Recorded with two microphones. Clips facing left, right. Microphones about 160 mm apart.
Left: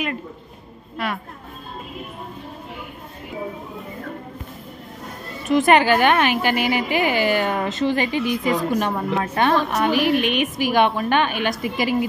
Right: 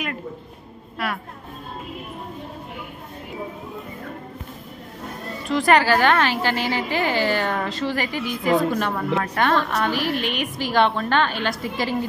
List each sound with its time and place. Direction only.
0.9 s speech: centre (ahead or behind)
5.5 s a woman's voice: 20° left (ahead or behind)